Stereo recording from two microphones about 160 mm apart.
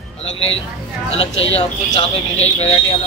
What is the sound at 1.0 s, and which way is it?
Speech, 40° left (ahead or behind).